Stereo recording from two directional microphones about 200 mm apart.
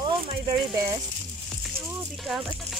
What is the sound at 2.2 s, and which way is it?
Speech, centre (ahead or behind).